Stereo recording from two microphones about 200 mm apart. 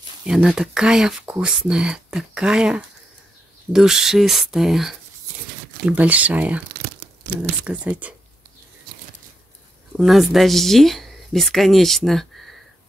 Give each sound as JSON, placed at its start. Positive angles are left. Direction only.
{"t": 0.3, "sound": "speech", "side_deg": -5}
{"t": 7.6, "sound": "speech", "side_deg": -5}
{"t": 9.9, "sound": "speech", "side_deg": 0}